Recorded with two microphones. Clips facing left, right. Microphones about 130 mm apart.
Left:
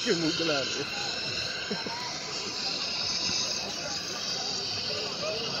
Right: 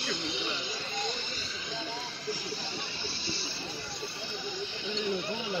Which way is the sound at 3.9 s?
80° left.